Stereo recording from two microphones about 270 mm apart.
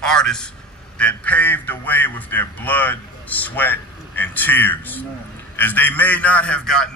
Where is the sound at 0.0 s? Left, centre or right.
Centre.